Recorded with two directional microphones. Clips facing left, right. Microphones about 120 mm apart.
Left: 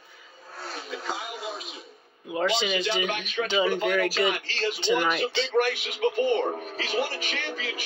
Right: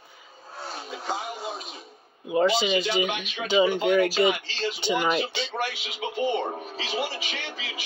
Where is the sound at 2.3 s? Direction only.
10° right (ahead or behind).